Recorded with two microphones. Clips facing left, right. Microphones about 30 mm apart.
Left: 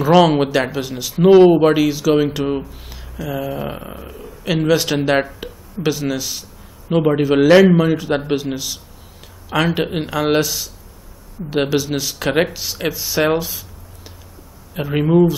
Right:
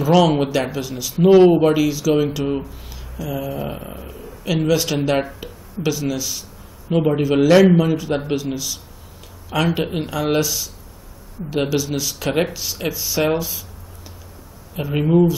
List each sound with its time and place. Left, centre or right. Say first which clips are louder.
0.0 s speech: left 3 dB; left
11.5 s speech: left 2 dB; centre
14.8 s speech: left 2 dB; centre